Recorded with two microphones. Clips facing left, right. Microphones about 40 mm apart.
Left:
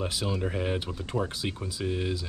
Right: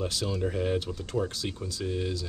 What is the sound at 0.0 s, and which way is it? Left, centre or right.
Speech, centre.